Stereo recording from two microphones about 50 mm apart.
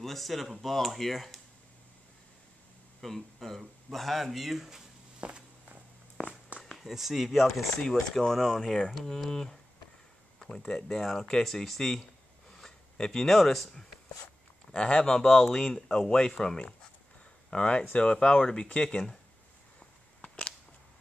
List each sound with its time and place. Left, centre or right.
0.0 s speech: centre
3.0 s speech: centre
5.2 s walk: right
6.6 s speech: centre